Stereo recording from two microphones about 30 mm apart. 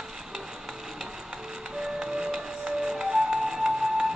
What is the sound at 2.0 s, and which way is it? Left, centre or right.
Music, centre.